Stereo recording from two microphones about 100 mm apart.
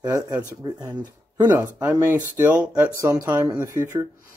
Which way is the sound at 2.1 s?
15° right (ahead or behind).